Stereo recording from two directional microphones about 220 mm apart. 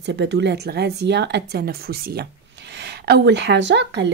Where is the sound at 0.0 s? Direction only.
50° right (ahead or behind).